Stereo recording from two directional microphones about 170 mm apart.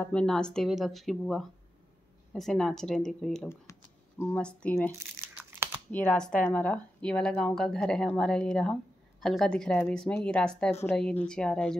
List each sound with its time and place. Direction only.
0.0 s speech: 5° left (ahead or behind)
5.4 s crumpling: 15° right (ahead or behind)
5.9 s speech: 10° left (ahead or behind)
10.7 s speech: 15° left (ahead or behind)
11.0 s speech: 5° left (ahead or behind)